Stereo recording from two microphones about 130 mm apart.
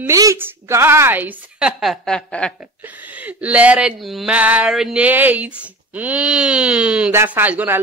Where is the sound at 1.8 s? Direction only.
Centre (ahead or behind).